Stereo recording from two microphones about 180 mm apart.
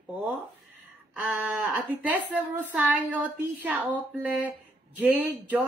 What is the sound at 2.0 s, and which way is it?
Speech, 10° right (ahead or behind).